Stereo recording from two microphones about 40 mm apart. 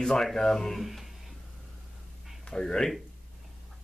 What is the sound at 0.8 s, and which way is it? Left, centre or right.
Music, centre.